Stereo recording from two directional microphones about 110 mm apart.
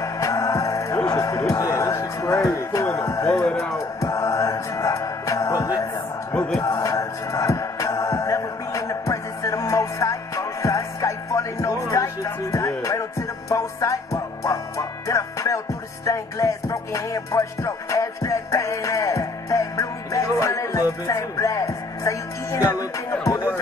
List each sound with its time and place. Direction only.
0.0 s music: 30° left (ahead or behind)
6.3 s music: 10° left (ahead or behind)
6.6 s music: 30° left (ahead or behind)
23.1 s a sound: 10° left (ahead or behind)